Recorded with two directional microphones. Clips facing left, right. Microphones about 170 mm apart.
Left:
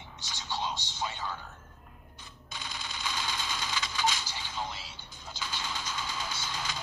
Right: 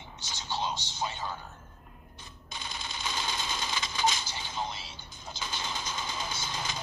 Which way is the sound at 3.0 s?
20° right (ahead or behind).